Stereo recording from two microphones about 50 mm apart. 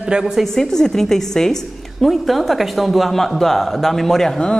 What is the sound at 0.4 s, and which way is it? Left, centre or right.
Speech, centre.